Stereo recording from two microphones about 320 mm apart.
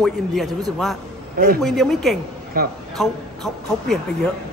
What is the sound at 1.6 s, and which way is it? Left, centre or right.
A man's voice, centre.